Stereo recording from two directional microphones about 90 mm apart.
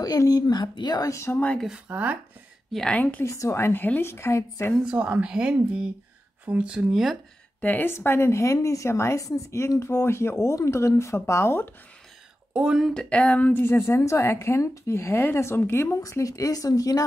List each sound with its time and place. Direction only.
0.0 s speech: 45° left (ahead or behind)
1.1 s speech: 30° left (ahead or behind)
1.7 s speech: 15° right (ahead or behind)
2.7 s a woman's voice: 5° left (ahead or behind)
3.0 s a sound: 15° left (ahead or behind)
3.3 s speech: 35° left (ahead or behind)
4.8 s speech: 15° right (ahead or behind)
7.6 s speech: 20° left (ahead or behind)
12.5 s speech: 10° right (ahead or behind)
12.9 s a sound: 10° left (ahead or behind)
13.5 s speech: 25° left (ahead or behind)
16.0 s speech: 40° left (ahead or behind)